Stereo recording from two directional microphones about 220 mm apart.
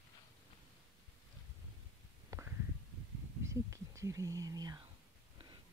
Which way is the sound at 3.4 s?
15° right (ahead or behind).